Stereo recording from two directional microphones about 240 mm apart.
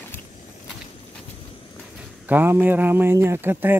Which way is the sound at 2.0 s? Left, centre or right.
Centre.